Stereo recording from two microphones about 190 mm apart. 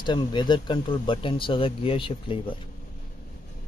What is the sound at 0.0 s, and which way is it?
Speech, 25° left (ahead or behind).